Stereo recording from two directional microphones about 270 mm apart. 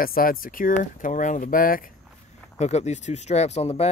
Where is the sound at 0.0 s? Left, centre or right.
Left.